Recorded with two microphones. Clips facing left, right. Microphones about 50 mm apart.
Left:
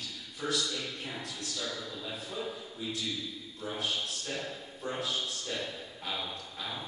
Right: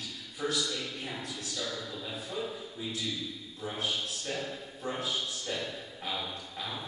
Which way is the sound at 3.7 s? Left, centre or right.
Centre.